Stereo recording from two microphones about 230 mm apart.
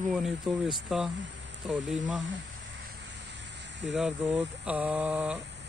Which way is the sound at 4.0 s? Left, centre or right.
Centre.